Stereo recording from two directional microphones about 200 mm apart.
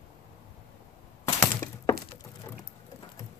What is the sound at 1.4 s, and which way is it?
Crack, 10° left (ahead or behind).